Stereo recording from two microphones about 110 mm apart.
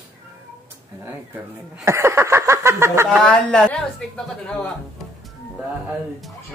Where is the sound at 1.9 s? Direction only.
25° right (ahead or behind).